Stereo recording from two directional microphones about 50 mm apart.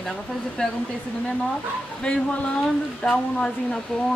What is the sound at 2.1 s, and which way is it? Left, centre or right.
Speech, centre.